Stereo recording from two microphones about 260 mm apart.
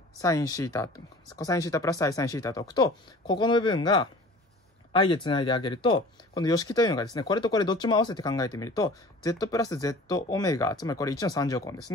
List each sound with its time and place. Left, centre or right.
0.2 s speech: centre